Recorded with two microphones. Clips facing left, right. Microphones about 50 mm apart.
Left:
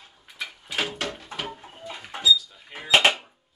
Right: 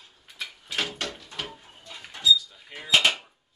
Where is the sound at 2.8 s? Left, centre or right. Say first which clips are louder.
Left 3 dB; left.